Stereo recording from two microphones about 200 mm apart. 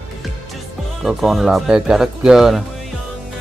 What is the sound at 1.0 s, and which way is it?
Speech, centre (ahead or behind).